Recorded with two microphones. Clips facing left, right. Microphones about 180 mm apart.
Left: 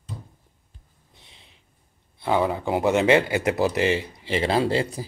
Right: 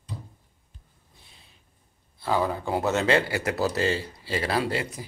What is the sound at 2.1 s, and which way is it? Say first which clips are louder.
Speech: left 3 dB; 20° left (ahead or behind).